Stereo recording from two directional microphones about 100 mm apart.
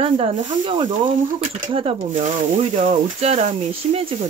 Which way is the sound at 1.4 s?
70° right (ahead or behind).